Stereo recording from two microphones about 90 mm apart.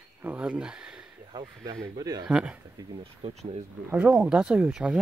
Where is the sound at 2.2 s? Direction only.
15° right (ahead or behind).